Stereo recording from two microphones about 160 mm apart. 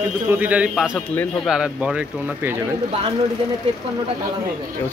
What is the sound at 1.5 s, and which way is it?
Speech, 5° right (ahead or behind).